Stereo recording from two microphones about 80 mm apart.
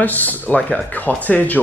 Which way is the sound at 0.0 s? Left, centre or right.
Left.